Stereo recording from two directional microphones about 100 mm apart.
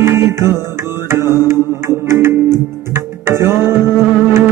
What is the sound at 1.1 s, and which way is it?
Mantra, 25° right (ahead or behind).